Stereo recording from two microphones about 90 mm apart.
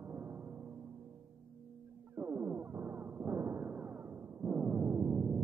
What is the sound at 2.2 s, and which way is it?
Music, 20° right (ahead or behind).